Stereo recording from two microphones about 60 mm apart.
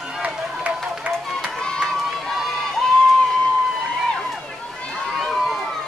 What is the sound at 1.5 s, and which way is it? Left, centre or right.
Crowd, centre.